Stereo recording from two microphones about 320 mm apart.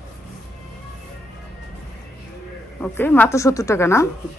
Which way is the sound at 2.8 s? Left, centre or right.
Centre.